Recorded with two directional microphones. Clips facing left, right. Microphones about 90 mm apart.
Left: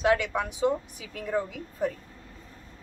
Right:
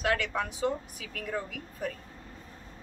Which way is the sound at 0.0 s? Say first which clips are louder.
Left 5 dB; 15° left (ahead or behind).